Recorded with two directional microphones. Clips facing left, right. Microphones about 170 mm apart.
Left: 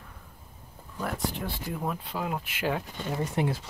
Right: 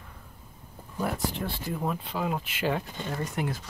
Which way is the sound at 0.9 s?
5° right (ahead or behind).